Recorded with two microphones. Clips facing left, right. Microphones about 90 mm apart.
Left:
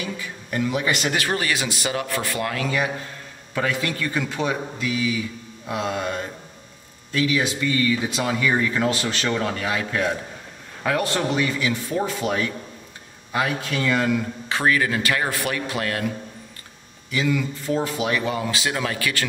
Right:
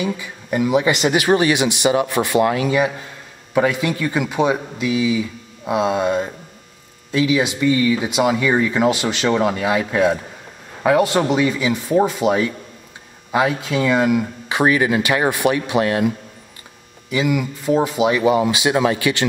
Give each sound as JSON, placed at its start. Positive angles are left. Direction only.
{"t": 0.0, "sound": "speech", "side_deg": -15}
{"t": 17.1, "sound": "speech", "side_deg": -15}